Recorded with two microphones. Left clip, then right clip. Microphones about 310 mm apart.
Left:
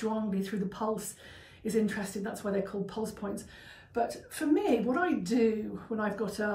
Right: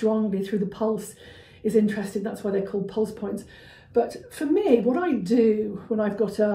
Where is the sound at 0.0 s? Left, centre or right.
Centre.